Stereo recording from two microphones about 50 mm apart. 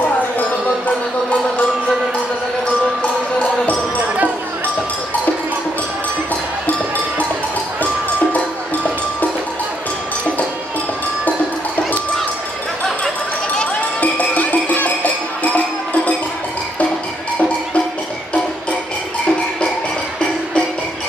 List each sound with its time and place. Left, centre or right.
4.0 s music: right
14.0 s music: left